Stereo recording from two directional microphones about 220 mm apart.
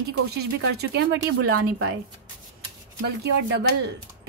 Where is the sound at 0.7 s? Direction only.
50° right (ahead or behind).